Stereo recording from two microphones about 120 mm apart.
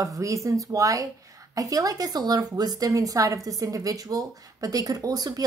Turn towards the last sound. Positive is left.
turn(degrees=-30)  # may be behind; listen again after turning